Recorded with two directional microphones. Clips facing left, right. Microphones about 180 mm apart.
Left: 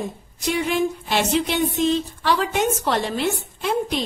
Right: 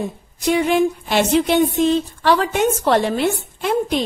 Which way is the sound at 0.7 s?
55° right (ahead or behind).